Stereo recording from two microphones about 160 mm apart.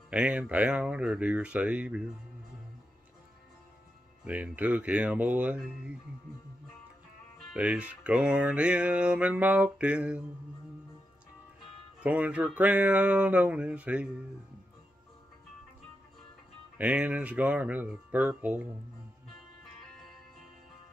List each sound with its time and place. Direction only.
0.1 s music: 10° right (ahead or behind)
4.2 s music: 10° right (ahead or behind)
7.5 s music: 10° right (ahead or behind)
12.0 s music: 10° right (ahead or behind)
16.7 s music: 5° right (ahead or behind)